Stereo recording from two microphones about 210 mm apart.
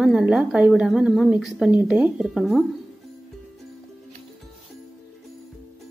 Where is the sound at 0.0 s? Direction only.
5° right (ahead or behind).